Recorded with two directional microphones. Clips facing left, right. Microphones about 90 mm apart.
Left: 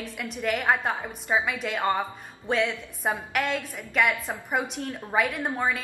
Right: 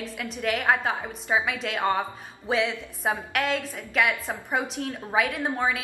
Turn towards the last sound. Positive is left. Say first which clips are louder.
# right 1 dB
turn(degrees=0)  # may be behind; listen again after turning